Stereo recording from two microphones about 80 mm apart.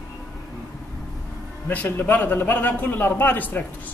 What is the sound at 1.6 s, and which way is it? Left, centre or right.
Speech, left.